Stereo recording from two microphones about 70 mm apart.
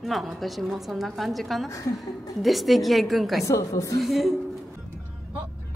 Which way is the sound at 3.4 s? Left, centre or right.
Left.